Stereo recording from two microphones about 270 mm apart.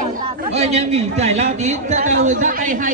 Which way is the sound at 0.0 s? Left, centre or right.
Right.